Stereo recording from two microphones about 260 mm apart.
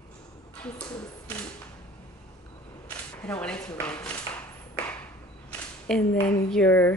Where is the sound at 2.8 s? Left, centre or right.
Centre.